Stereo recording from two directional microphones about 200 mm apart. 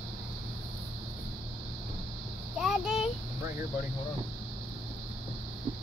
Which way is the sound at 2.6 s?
Centre (ahead or behind).